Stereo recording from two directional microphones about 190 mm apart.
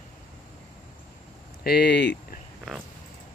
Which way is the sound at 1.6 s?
60° left (ahead or behind).